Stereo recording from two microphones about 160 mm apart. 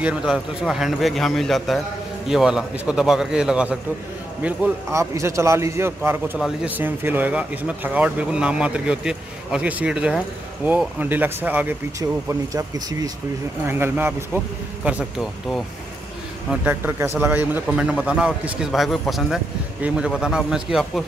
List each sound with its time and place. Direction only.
0.0 s a man's voice: 5° right (ahead or behind)
12.0 s a man's voice: 20° right (ahead or behind); by 21.0 s centre (ahead or behind)